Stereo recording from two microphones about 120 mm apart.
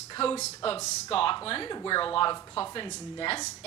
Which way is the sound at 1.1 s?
50° left (ahead or behind).